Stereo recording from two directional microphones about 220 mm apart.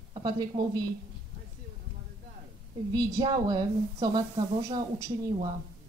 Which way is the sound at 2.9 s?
20° right (ahead or behind).